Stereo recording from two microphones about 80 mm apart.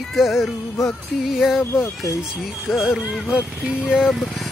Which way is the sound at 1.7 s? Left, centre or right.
Left.